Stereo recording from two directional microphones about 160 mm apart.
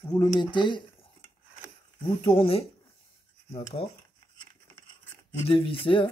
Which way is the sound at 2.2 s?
35° left (ahead or behind).